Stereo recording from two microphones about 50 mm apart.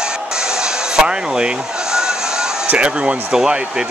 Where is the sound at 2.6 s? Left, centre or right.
Right.